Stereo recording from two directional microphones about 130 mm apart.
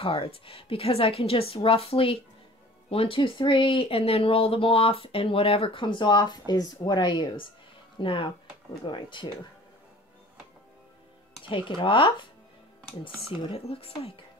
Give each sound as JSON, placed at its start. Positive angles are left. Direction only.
{"t": 0.0, "sound": "a woman's voice", "side_deg": 45}
{"t": 11.4, "sound": "a woman's voice", "side_deg": 40}